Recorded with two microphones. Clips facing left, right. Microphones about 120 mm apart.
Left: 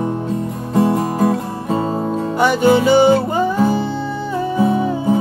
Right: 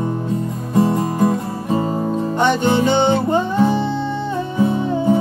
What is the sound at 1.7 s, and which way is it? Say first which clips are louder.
Music: even; 25° left (ahead or behind).